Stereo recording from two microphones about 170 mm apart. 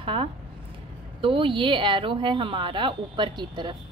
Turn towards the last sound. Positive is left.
turn(degrees=-25)  # may be behind; listen again after turning